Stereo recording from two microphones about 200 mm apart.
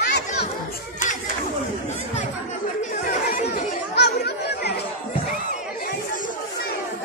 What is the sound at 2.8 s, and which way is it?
Chatter, 40° left (ahead or behind).